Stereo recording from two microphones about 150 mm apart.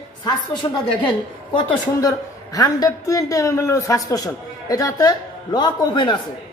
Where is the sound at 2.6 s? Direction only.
25° left (ahead or behind).